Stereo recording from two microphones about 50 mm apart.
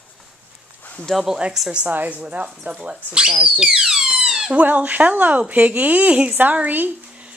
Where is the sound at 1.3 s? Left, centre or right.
Centre.